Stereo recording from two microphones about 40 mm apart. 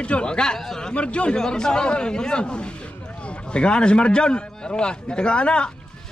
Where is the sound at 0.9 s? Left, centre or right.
Left.